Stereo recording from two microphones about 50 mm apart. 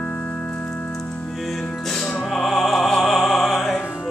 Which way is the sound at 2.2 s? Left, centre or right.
Centre.